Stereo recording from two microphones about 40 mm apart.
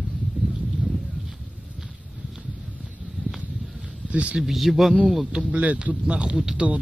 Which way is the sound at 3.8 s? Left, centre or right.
Right.